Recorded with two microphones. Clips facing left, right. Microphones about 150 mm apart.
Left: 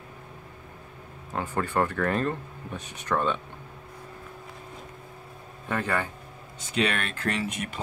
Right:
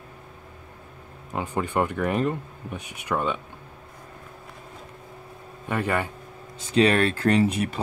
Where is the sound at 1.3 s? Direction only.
15° right (ahead or behind).